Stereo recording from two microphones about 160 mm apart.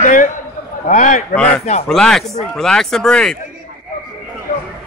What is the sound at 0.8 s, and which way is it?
Speech, 50° left (ahead or behind).